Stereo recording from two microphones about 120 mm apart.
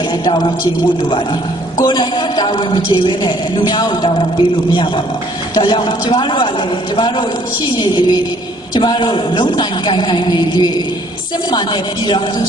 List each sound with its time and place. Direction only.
1.8 s a man's voice: 40° left (ahead or behind)